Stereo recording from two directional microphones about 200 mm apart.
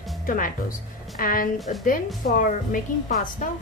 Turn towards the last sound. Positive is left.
turn(degrees=40)  # may be behind; listen again after turning